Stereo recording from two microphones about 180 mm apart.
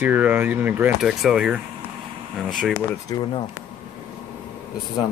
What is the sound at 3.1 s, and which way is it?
Speech, 25° left (ahead or behind).